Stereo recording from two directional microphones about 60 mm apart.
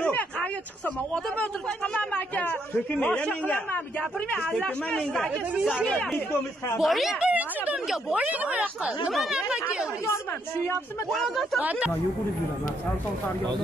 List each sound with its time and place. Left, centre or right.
2.0 s speech: left
4.5 s a man's voice: centre
5.6 s speech: centre
5.9 s a man's voice: centre
6.8 s speech: centre
7.2 s speech: right
9.1 s speech: centre
9.5 s speech: centre
11.1 s speech: centre